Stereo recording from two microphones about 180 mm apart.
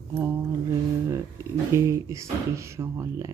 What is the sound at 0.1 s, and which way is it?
Mantra, 15° right (ahead or behind).